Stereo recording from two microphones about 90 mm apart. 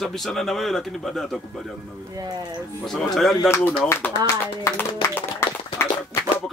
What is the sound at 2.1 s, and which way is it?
Speech, 50° right (ahead or behind).